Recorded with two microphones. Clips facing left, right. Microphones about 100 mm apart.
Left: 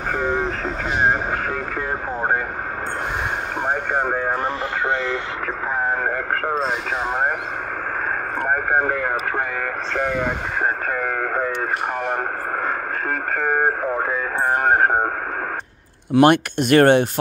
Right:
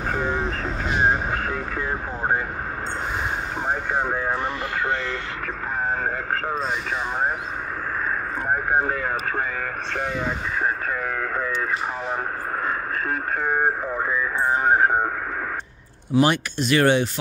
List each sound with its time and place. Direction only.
1.8 s speech: 40° left (ahead or behind)
3.7 s speech: 50° left (ahead or behind)
4.8 s speech: 20° left (ahead or behind)
8.5 s speech: 55° left (ahead or behind)
10.1 s speech: 55° left (ahead or behind)
13.4 s speech: 50° left (ahead or behind)
16.1 s speech: 55° left (ahead or behind)